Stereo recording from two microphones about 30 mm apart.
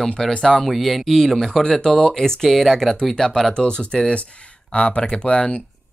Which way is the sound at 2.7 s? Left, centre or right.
Centre.